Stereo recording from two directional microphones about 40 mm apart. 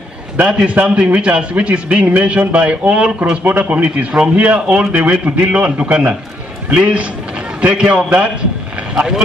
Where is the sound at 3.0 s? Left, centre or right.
Right.